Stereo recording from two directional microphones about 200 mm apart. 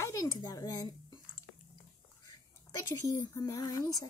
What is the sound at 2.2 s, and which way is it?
A woman's voice, 20° left (ahead or behind).